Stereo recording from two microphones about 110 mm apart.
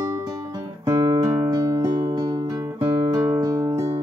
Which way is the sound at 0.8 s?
35° right (ahead or behind).